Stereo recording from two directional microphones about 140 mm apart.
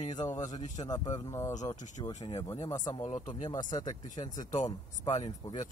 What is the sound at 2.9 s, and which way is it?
Speech, 55° left (ahead or behind).